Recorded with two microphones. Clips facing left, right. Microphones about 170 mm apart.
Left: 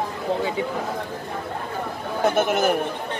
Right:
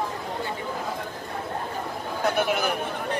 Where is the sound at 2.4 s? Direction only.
45° left (ahead or behind).